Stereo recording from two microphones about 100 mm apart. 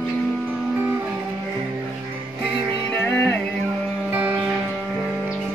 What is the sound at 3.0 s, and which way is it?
Music, 20° left (ahead or behind).